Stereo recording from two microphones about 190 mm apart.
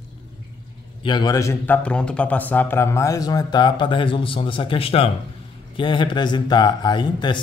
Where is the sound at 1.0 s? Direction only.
20° left (ahead or behind).